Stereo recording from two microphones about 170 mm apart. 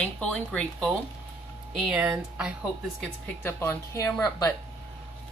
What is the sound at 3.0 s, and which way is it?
A woman's voice, 10° left (ahead or behind).